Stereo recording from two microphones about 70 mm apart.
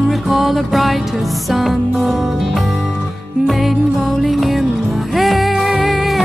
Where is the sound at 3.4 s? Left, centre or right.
Centre.